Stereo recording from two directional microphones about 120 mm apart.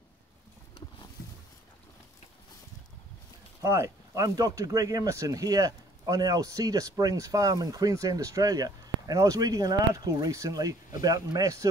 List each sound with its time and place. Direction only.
3.6 s speech: 25° right (ahead or behind)